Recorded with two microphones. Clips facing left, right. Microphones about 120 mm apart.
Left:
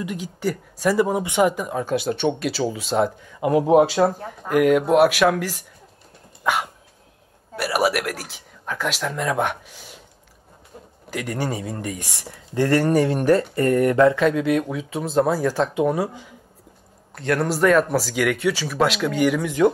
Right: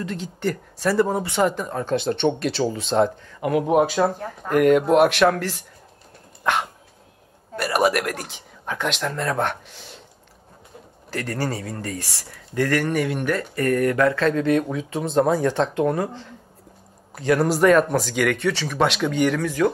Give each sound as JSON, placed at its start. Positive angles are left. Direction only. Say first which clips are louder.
{"t": 0.0, "sound": "speech", "louder": "even", "side_deg": 10}
{"t": 3.4, "sound": "speech", "louder": "left 3 dB", "side_deg": 25}
{"t": 4.0, "sound": "speech", "louder": "left 2 dB", "side_deg": 5}
{"t": 6.4, "sound": "dog", "louder": "even", "side_deg": 5}
{"t": 7.5, "sound": "speech", "louder": "right 1 dB", "side_deg": 5}
{"t": 11.1, "sound": "speech", "louder": "even", "side_deg": 15}
{"t": 12.5, "sound": "speech", "louder": "left 3 dB", "side_deg": 30}
{"t": 17.1, "sound": "speech", "louder": "right 2 dB", "side_deg": 0}
{"t": 19.4, "sound": "speech", "louder": "left 3 dB", "side_deg": 20}